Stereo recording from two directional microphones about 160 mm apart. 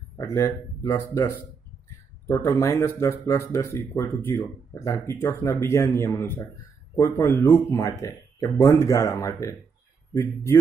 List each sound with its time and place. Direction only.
0.2 s speech: 20° left (ahead or behind)